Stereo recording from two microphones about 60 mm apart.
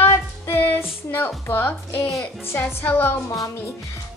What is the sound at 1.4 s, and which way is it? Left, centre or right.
A woman's voice, left.